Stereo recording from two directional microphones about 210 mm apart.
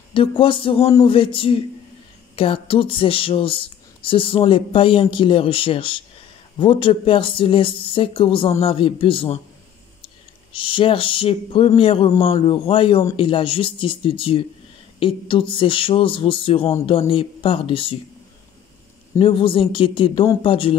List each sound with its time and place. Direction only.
0.1 s speech: 25° left (ahead or behind)
19.1 s speech: 25° left (ahead or behind)